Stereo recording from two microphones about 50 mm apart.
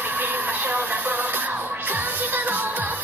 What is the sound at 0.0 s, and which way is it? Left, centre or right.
Music, right.